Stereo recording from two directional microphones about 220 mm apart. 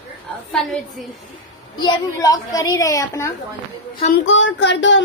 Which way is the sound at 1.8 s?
20° left (ahead or behind).